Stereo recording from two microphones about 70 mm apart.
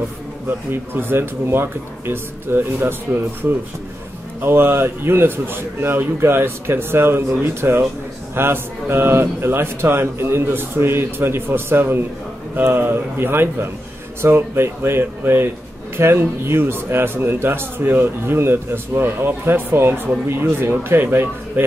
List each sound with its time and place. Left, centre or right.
0.5 s a man's voice: right